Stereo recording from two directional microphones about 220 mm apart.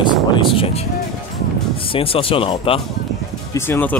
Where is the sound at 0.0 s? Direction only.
20° left (ahead or behind).